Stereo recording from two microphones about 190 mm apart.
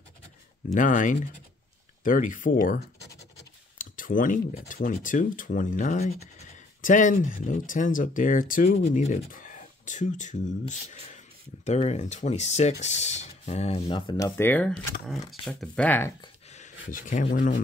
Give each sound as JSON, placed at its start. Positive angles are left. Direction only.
{"t": 0.7, "sound": "speech", "side_deg": 45}
{"t": 16.9, "sound": "speech", "side_deg": 45}